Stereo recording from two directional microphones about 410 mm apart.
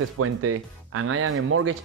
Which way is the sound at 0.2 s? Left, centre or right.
Right.